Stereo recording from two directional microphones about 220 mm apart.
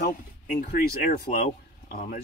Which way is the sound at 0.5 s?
40° left (ahead or behind).